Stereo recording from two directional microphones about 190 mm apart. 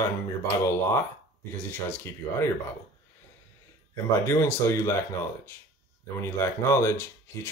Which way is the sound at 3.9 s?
15° left (ahead or behind).